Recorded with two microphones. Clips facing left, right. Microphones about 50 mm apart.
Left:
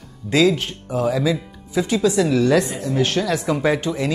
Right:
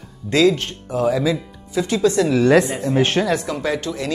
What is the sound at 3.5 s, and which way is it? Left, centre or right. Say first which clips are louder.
Speech: left 3 dB; centre.